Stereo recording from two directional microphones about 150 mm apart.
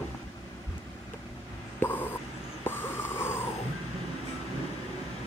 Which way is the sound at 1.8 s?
15° left (ahead or behind).